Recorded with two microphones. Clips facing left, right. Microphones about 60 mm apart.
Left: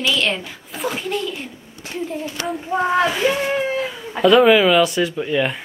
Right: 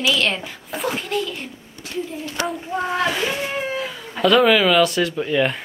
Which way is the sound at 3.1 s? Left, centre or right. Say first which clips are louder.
Left 4 dB; centre.